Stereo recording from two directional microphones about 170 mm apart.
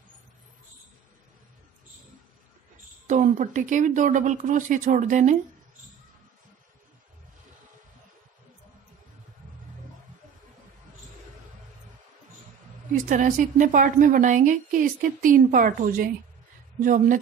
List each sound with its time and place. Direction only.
3.1 s a woman's voice: 45° right (ahead or behind)
12.9 s a woman's voice: 50° right (ahead or behind)